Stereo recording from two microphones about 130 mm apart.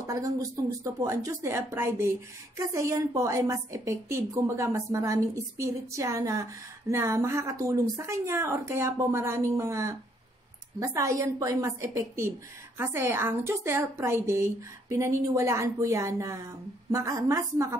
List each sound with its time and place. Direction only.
0.0 s a woman's voice: 25° right (ahead or behind)